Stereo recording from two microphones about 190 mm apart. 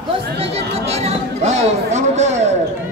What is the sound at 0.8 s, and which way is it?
Chatter, 35° right (ahead or behind).